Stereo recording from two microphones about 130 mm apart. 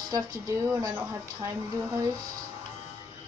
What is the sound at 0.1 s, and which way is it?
Speech, 30° right (ahead or behind).